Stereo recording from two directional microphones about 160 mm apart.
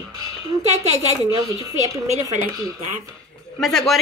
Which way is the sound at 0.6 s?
40° right (ahead or behind).